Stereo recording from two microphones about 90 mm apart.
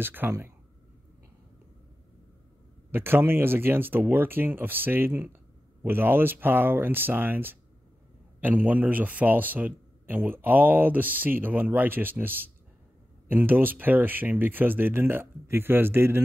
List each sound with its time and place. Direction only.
0.0 s a man's voice: 25° right (ahead or behind)
2.9 s a man's voice: 25° right (ahead or behind)